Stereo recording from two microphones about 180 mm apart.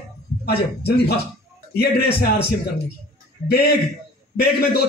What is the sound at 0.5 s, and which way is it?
Speech, 60° left (ahead or behind).